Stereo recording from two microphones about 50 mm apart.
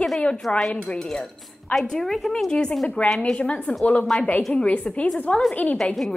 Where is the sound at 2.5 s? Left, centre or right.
Centre.